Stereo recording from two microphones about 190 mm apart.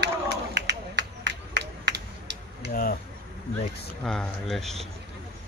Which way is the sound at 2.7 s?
50° left (ahead or behind).